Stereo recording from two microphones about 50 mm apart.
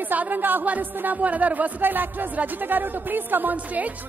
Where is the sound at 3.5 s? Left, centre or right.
Right.